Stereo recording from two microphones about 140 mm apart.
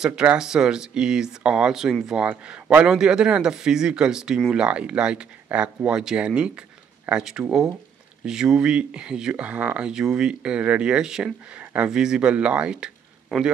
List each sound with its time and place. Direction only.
0.0 s speech: 5° right (ahead or behind)